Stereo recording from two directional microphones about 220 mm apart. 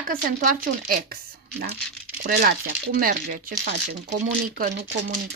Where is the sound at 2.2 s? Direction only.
40° right (ahead or behind).